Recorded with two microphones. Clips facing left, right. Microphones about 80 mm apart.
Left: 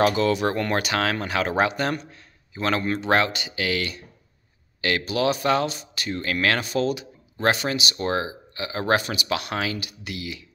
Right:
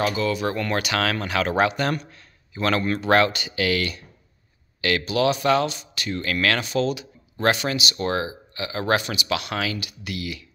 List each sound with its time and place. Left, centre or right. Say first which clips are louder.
0.0 s speech: left 3 dB; left
0.5 s a man's voice: left 1 dB; left